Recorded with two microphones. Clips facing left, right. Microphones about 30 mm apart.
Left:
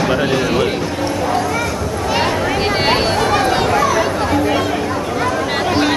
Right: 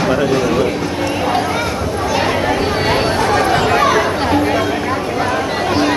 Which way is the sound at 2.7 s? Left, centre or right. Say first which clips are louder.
Left 1 dB; left.